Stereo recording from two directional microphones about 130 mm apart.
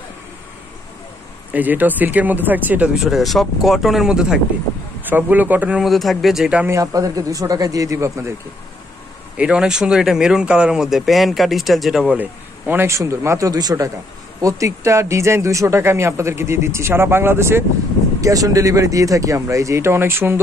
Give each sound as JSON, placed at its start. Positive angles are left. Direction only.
{"t": 1.5, "sound": "speech", "side_deg": -15}
{"t": 3.0, "sound": "speech", "side_deg": 0}
{"t": 6.7, "sound": "speech", "side_deg": -25}
{"t": 9.4, "sound": "speech", "side_deg": -5}